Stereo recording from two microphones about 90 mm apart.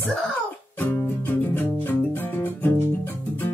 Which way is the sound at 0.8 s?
20° left (ahead or behind).